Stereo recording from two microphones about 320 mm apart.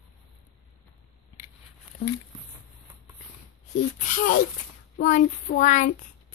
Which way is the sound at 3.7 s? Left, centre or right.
Left.